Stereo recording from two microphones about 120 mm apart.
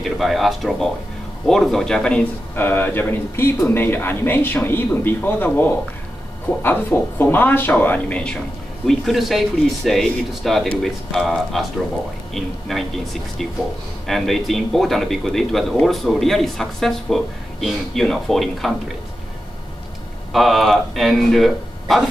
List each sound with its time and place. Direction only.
0.0 s speech: centre (ahead or behind)
2.5 s speech: 15° left (ahead or behind)
8.8 s speech: centre (ahead or behind)
20.3 s speech: centre (ahead or behind)